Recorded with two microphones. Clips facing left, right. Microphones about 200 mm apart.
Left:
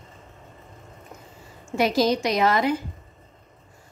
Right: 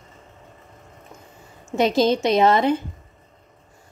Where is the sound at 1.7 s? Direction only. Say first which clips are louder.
Right 3 dB; 25° right (ahead or behind).